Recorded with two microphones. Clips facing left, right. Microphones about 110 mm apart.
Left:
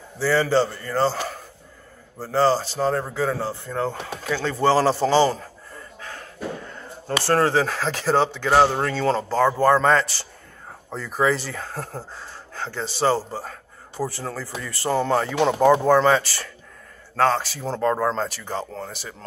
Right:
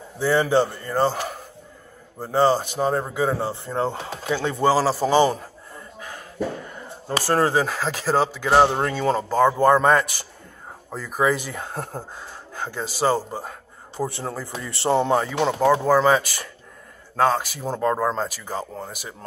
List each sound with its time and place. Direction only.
0.2 s speech: 20° right (ahead or behind)
5.9 s a sound: 15° right (ahead or behind)
7.2 s speech: 10° right (ahead or behind)
8.6 s speech: 20° right (ahead or behind)
15.3 s speech: centre (ahead or behind)